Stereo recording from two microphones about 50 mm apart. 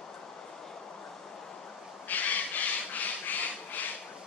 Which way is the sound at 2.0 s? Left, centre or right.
Left.